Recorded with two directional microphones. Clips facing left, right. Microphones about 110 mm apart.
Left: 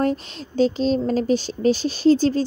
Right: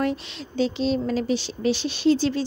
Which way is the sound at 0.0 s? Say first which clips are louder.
Left 3 dB; 40° left (ahead or behind).